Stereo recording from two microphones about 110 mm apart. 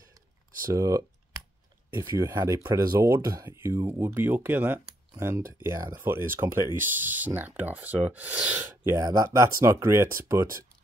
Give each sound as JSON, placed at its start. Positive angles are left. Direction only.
{"t": 0.7, "sound": "speech", "side_deg": -30}
{"t": 8.5, "sound": "speech", "side_deg": -25}